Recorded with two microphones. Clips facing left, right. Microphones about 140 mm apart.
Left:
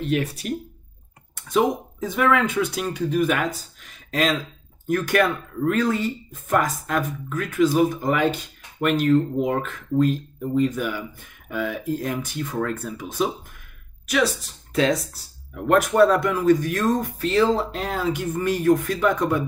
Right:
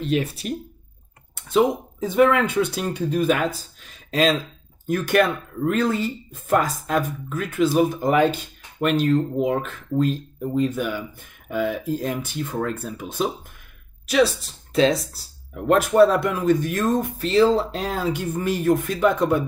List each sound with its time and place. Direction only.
0.0 s speech: 25° right (ahead or behind)
9.4 s speech: 20° right (ahead or behind)
14.0 s speech: 30° right (ahead or behind)